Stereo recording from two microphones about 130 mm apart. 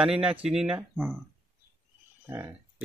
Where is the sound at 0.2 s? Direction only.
10° right (ahead or behind).